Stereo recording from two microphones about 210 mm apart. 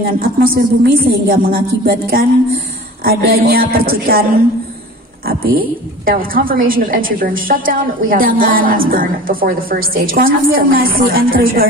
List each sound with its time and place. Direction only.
0.0 s a woman's voice: 45° right (ahead or behind)
5.2 s a woman's voice: 45° right (ahead or behind)